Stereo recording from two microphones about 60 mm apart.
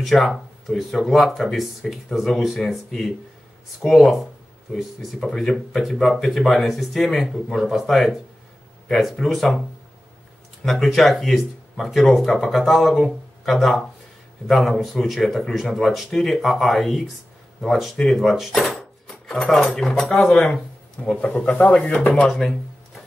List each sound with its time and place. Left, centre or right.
0.0 s speech: centre
3.8 s speech: left
4.7 s speech: centre
10.6 s speech: centre
18.8 s chopping: centre
19.9 s speech: centre
22.1 s speech: centre